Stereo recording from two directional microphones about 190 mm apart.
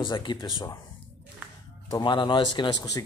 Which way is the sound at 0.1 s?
25° left (ahead or behind).